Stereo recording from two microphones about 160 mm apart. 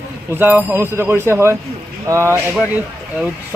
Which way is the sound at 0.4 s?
10° right (ahead or behind).